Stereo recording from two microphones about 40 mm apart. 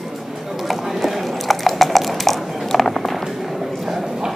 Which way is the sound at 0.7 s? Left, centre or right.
Centre.